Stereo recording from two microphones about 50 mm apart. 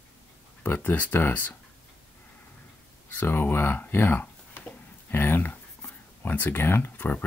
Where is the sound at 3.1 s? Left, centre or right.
Left.